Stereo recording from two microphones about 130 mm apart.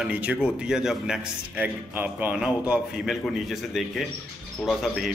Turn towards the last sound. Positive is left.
turn(degrees=0)  # may be behind; listen again after turning